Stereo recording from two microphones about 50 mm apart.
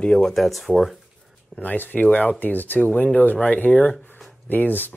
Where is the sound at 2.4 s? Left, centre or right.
Left.